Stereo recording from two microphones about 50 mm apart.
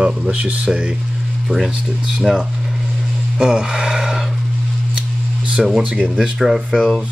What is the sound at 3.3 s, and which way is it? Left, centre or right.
Speech, centre.